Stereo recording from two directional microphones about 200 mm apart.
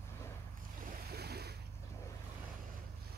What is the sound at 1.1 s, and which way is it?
Boat, 55° right (ahead or behind).